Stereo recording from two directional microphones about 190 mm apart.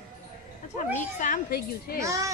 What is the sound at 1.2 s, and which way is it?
Speech, 50° left (ahead or behind).